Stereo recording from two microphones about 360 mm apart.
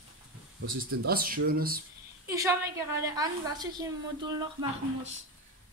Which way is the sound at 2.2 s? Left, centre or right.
Centre.